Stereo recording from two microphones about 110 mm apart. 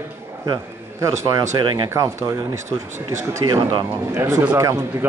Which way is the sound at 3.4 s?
40° right (ahead or behind).